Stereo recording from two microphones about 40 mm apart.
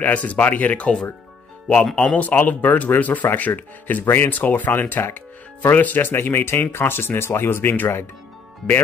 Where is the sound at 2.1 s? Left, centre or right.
Left.